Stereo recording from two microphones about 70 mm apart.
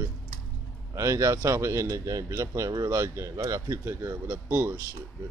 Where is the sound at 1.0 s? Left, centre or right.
Right.